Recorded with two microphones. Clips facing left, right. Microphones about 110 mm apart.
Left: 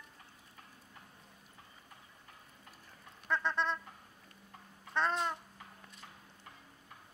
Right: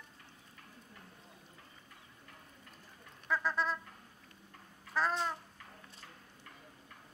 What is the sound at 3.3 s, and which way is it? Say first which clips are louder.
Bird: even; 5° right (ahead or behind).